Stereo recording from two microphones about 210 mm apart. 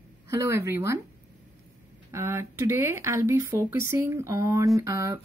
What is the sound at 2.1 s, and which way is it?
Speech, 15° right (ahead or behind).